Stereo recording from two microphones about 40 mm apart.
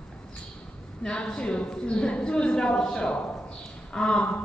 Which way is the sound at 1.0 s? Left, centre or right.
Left.